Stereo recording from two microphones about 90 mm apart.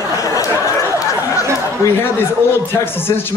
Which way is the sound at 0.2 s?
40° left (ahead or behind).